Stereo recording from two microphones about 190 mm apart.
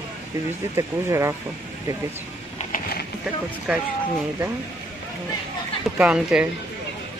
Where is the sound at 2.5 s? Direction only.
50° left (ahead or behind).